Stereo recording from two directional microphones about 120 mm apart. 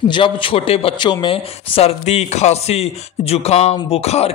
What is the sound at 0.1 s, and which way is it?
Speech, 45° left (ahead or behind).